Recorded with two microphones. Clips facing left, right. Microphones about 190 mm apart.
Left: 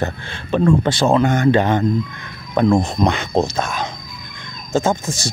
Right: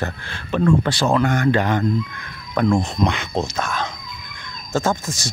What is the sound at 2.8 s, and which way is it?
Speech, 40° left (ahead or behind).